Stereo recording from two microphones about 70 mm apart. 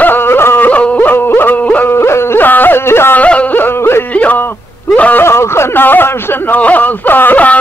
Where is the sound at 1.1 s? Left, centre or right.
Left.